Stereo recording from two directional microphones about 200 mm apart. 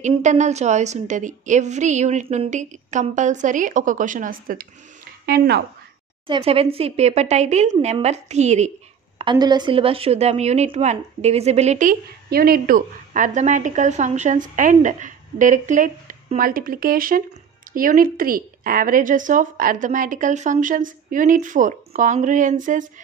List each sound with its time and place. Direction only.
0.0 s a woman's voice: 35° right (ahead or behind); by 5.6 s 50° right (ahead or behind)
6.2 s a woman's voice: 25° right (ahead or behind)
9.2 s a woman's voice: 20° right (ahead or behind); by 22.8 s 40° right (ahead or behind)